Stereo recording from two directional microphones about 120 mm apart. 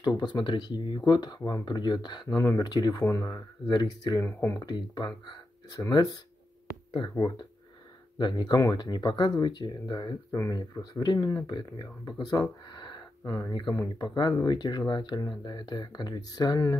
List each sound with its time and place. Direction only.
0.0 s speech: 40° left (ahead or behind)
2.2 s speech: 25° left (ahead or behind)
4.2 s speech: 20° left (ahead or behind)
4.6 s speech: 40° left (ahead or behind)
7.2 s speech: 35° left (ahead or behind)
10.3 s speech: 25° left (ahead or behind)
13.2 s speech: 20° left (ahead or behind)
13.5 s speech: 35° left (ahead or behind)